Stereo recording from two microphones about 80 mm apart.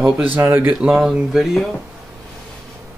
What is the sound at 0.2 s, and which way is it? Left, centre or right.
Speech, right.